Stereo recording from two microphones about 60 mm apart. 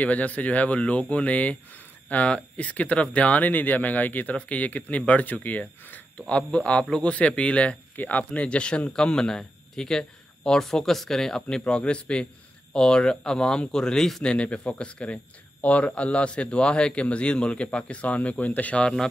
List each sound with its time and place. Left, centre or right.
0.0 s speech: left